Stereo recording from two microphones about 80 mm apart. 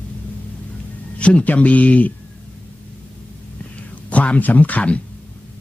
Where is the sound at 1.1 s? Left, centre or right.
Centre.